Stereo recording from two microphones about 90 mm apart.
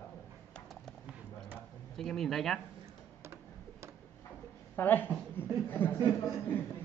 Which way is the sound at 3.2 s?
30° right (ahead or behind).